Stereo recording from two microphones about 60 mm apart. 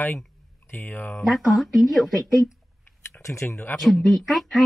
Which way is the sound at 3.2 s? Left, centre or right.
Left.